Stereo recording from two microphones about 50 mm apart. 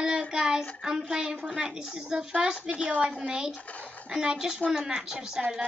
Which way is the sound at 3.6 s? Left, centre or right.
Left.